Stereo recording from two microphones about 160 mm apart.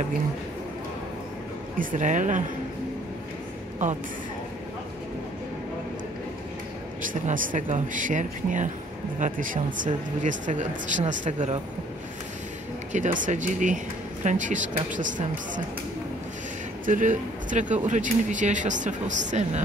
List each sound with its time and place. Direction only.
1.8 s speech: 55° right (ahead or behind)
7.1 s speech: 55° right (ahead or behind)
12.9 s speech: 50° right (ahead or behind)
16.8 s speech: 50° right (ahead or behind)